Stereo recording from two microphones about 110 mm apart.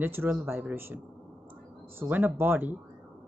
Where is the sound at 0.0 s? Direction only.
20° right (ahead or behind).